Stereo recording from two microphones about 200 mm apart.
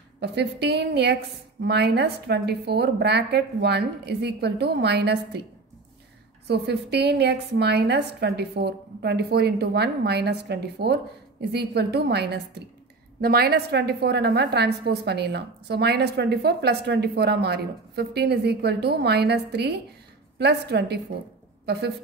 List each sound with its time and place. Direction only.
0.2 s a woman's voice: 55° right (ahead or behind)
6.4 s a woman's voice: 55° right (ahead or behind)